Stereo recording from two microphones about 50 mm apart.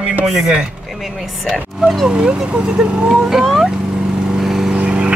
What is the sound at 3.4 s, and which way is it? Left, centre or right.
Speech, centre.